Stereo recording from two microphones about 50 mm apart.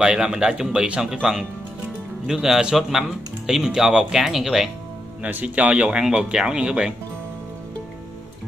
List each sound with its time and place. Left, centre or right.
0.0 s speech: centre
2.2 s speech: centre
5.2 s speech: right